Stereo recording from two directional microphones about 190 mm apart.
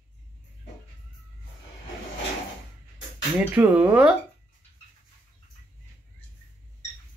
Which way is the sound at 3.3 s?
10° right (ahead or behind).